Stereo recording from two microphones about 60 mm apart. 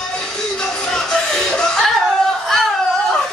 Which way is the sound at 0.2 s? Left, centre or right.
Centre.